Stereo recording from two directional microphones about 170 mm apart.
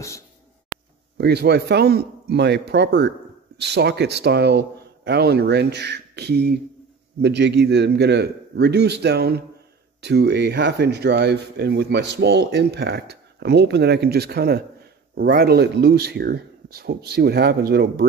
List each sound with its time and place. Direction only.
1.1 s speech: 75° right (ahead or behind)
7.2 s speech: 85° right; by 18.0 s 70° right (ahead or behind)